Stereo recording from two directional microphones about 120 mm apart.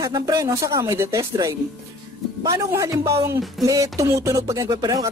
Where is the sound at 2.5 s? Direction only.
25° right (ahead or behind).